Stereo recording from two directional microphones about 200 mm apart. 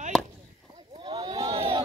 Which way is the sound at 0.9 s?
25° right (ahead or behind).